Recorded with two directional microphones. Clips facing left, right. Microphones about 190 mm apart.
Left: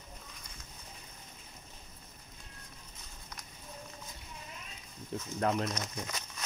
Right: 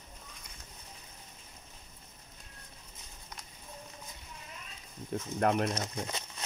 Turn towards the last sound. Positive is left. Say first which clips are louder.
# right 2 dB
turn(degrees=-30)  # may be behind; listen again after turning